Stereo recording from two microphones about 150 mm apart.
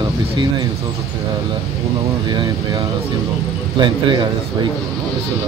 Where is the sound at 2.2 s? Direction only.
30° right (ahead or behind).